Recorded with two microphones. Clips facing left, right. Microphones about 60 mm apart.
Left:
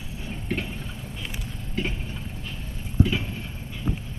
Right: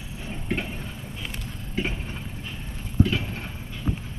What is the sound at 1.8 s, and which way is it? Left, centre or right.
Vehicle, centre.